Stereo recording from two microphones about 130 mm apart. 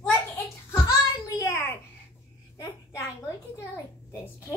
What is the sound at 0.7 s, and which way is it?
Child singing, 25° left (ahead or behind).